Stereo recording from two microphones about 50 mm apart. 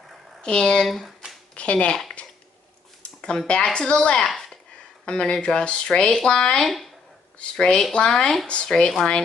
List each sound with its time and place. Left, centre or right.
0.4 s speech: centre
1.0 s hands: centre
1.5 s speech: left
3.0 s speech: left
4.3 s a sound: centre
5.0 s speech: centre